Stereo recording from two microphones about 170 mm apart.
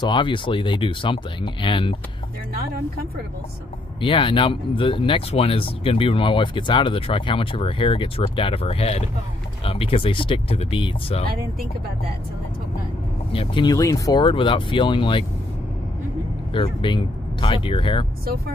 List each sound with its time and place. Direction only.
0.0 s speech: 30° left (ahead or behind)
4.0 s speech: 30° left (ahead or behind)
13.3 s speech: 30° left (ahead or behind)
16.5 s speech: 30° left (ahead or behind)